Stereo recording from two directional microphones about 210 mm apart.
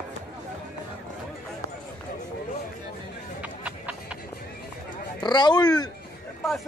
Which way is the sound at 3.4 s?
5° right (ahead or behind).